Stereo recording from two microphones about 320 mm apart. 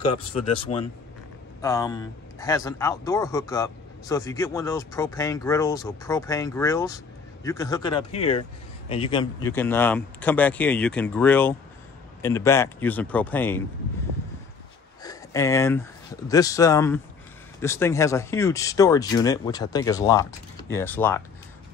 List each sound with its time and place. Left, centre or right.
0.7 s speech: left
1.6 s a man's voice: centre
15.0 s a man's voice: centre